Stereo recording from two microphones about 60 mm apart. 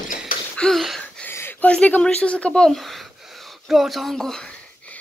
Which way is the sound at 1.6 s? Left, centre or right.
Left.